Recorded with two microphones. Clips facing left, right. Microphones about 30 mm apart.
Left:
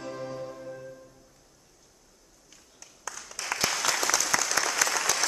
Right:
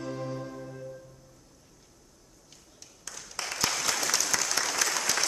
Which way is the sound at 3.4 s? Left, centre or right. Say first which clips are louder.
Left 3 dB; right.